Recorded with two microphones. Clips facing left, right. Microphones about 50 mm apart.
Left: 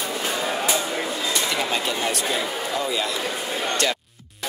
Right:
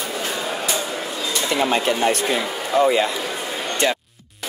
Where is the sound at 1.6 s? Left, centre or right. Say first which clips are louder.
Right 6 dB; right.